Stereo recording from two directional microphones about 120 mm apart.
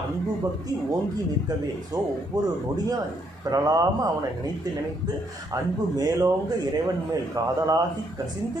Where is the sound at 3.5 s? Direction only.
30° right (ahead or behind).